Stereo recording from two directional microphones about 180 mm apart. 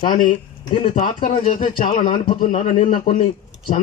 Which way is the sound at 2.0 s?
30° left (ahead or behind).